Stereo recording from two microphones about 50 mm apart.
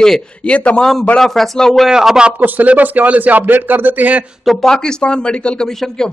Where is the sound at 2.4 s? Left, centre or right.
Right.